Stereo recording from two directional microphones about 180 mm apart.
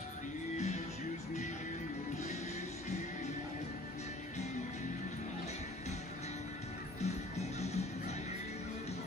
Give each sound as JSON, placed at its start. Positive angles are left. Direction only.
{"t": 7.0, "sound": "music", "side_deg": 35}